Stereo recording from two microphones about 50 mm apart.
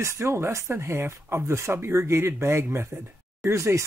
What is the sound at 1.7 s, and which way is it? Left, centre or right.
Speech, right.